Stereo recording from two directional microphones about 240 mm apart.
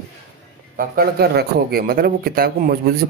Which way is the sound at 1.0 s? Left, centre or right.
Right.